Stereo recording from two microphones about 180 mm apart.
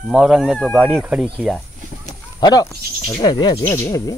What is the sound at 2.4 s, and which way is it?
Speech, 20° left (ahead or behind).